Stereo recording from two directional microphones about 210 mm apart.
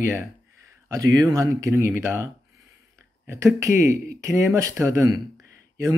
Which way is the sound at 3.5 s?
15° right (ahead or behind).